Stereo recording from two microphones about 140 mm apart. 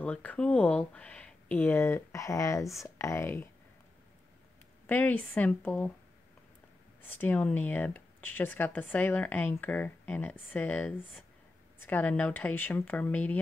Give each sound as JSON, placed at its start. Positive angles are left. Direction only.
{"t": 0.0, "sound": "speech", "side_deg": 10}
{"t": 4.8, "sound": "speech", "side_deg": 10}
{"t": 7.2, "sound": "speech", "side_deg": 15}